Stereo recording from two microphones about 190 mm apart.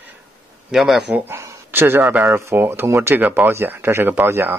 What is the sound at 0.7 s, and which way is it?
A man's voice, centre (ahead or behind).